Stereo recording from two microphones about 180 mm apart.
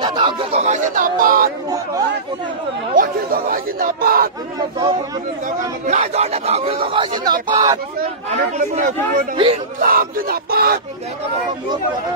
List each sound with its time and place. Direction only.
0.0 s a sound: 25° right (ahead or behind); by 1.5 s 50° right (ahead or behind)
2.9 s chatter: 50° right (ahead or behind)
4.6 s speech: 20° right (ahead or behind)
5.9 s a man's voice: 35° right (ahead or behind); by 7.8 s 20° right (ahead or behind)
8.3 s a man's voice: 45° right (ahead or behind)